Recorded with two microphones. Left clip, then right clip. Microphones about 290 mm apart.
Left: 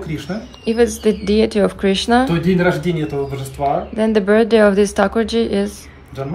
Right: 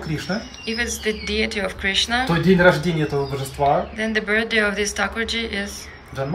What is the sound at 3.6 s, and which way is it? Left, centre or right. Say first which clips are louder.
Speech: even; centre.